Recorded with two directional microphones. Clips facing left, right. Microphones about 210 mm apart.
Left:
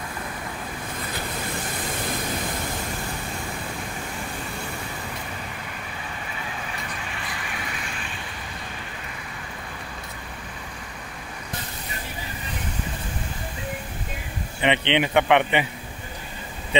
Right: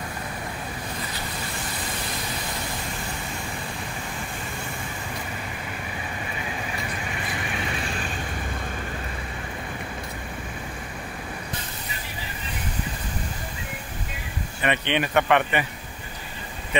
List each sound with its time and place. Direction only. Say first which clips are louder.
14.6 s speech: left 3 dB; 20° left (ahead or behind)